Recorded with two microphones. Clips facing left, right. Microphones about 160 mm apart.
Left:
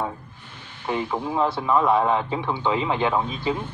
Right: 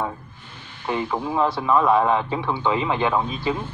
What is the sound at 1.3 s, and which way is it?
A man's voice, 20° left (ahead or behind).